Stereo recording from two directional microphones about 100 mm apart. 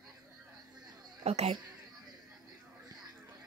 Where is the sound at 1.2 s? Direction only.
90° right.